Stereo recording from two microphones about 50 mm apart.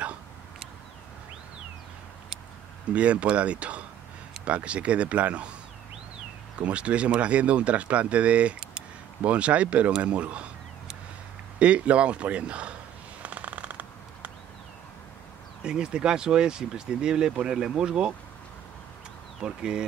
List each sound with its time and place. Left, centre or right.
2.9 s speech: right
6.6 s speech: right
11.6 s speech: right
13.2 s a sound: right
15.6 s speech: centre
19.4 s speech: centre